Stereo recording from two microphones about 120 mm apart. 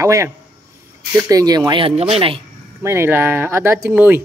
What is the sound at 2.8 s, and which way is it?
Speech, 20° right (ahead or behind).